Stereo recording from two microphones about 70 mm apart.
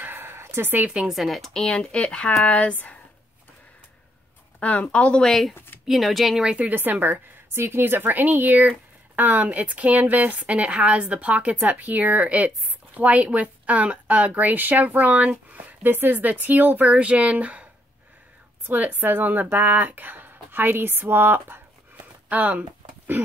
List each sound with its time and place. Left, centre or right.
0.0 s a sound: right
0.8 s speech: centre
1.1 s speech: centre; by 3.0 s left
4.6 s speech: left; by 6.5 s centre
6.5 s speech: right
18.7 s speech: right